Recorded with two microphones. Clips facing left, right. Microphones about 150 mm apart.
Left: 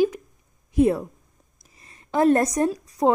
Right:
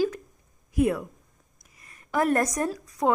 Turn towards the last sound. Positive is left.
turn(degrees=25)  # may be behind; listen again after turning